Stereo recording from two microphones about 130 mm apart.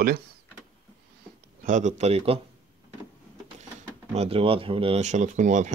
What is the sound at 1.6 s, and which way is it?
Speech, 70° right (ahead or behind).